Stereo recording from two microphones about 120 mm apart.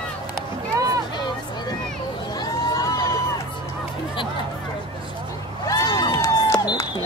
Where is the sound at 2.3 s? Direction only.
35° left (ahead or behind).